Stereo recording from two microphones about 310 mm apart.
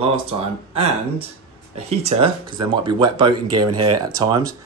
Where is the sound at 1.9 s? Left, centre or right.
Centre.